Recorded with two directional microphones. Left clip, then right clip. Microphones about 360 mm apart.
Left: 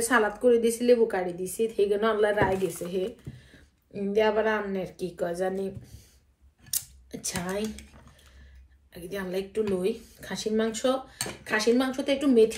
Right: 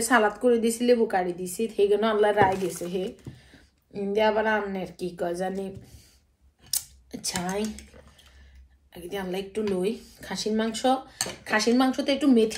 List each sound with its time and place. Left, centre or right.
0.0 s a woman's voice: centre
6.7 s a sound: centre
8.9 s a woman's voice: centre